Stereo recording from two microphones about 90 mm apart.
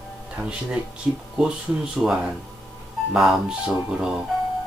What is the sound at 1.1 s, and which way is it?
Speech, 20° right (ahead or behind).